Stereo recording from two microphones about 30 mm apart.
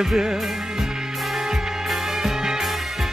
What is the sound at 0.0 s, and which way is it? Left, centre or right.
Music, centre.